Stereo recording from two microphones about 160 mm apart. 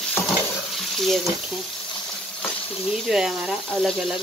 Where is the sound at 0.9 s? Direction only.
Centre (ahead or behind).